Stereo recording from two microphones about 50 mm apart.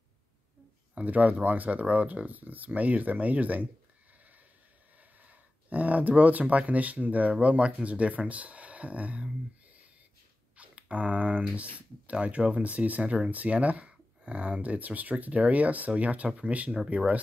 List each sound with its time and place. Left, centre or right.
0.9 s speech: right
5.2 s speech: right
10.6 s speech: right